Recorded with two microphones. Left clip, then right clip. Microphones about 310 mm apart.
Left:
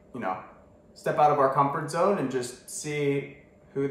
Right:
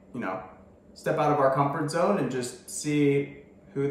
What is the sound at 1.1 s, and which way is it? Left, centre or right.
Speech, centre.